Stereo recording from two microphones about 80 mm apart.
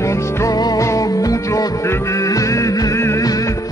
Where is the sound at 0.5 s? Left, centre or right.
Left.